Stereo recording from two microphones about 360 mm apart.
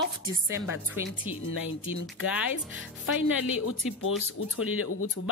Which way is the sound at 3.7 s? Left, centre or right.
Left.